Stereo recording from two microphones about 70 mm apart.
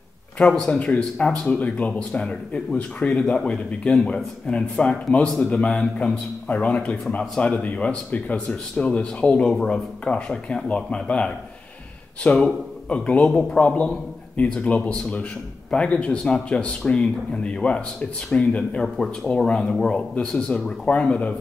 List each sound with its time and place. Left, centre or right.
0.4 s a man's voice: centre
13.3 s speech: centre
13.6 s a man's voice: left